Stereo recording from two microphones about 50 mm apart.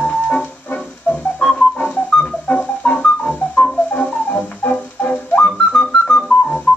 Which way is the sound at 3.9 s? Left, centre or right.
Left.